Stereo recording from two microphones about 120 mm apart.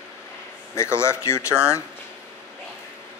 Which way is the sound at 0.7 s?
20° left (ahead or behind).